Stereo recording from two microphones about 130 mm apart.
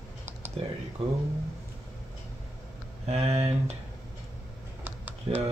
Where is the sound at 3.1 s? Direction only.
50° right (ahead or behind).